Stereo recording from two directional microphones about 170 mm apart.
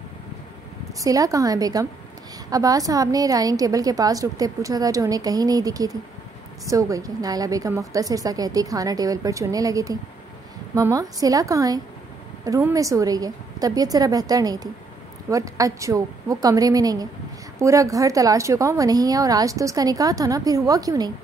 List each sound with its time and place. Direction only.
1.0 s a woman's voice: 20° right (ahead or behind)